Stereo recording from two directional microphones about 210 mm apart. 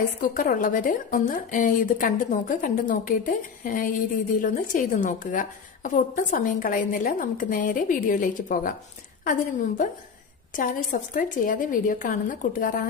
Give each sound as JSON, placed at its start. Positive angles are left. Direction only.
{"t": 0.3, "sound": "a woman's voice", "side_deg": 40}